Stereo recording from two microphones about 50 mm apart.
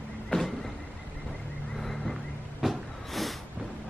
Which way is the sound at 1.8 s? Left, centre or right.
Centre.